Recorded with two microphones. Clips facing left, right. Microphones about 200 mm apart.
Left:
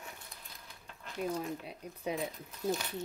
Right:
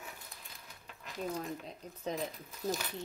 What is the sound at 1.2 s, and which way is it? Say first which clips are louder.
Speech: left 2 dB; 10° left (ahead or behind).